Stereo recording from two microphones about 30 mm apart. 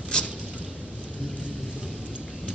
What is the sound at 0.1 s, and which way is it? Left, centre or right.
Rodents, left.